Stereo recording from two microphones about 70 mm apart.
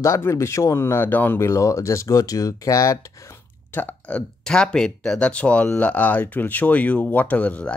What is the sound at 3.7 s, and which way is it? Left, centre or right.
Speech, left.